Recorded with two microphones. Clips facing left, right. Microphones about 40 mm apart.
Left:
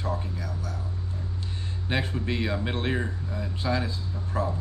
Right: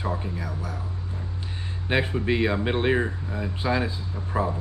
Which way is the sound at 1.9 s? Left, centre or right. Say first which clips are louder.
Right 5 dB; centre.